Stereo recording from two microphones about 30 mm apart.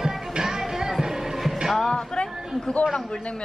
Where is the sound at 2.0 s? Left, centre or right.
Left.